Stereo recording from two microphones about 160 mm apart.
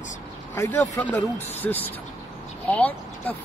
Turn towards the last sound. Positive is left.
turn(degrees=10)  # may be behind; listen again after turning